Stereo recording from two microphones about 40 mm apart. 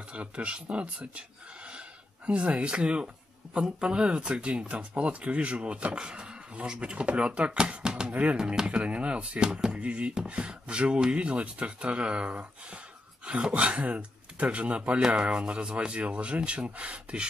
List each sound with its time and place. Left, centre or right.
0.1 s speech: right
8.1 s speech: right
8.4 s speech: right
15.0 s speech: centre